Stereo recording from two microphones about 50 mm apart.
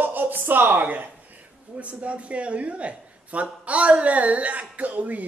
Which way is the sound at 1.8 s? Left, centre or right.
Right.